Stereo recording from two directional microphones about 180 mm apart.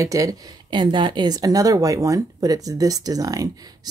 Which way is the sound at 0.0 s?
20° right (ahead or behind).